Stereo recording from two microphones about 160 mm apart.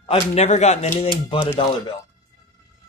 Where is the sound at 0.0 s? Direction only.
40° left (ahead or behind).